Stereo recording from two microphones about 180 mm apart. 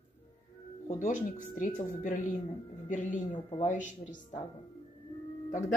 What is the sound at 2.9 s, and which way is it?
A woman's voice, 45° left (ahead or behind).